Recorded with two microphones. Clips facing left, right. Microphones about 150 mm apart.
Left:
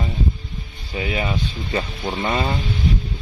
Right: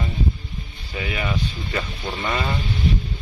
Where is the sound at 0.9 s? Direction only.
25° left (ahead or behind).